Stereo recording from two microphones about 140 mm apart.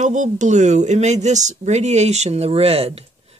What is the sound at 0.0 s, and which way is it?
Speech, 60° right (ahead or behind).